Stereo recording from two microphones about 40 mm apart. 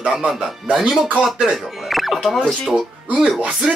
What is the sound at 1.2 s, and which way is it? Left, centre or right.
Speech, centre.